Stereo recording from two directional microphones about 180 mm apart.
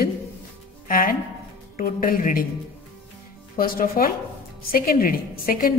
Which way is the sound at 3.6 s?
55° left (ahead or behind).